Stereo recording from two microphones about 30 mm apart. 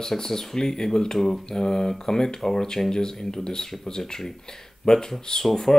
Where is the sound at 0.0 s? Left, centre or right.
Centre.